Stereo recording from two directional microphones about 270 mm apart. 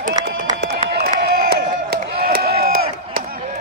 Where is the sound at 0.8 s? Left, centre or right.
Right.